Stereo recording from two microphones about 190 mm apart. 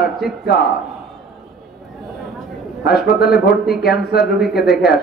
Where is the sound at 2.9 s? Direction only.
55° left (ahead or behind).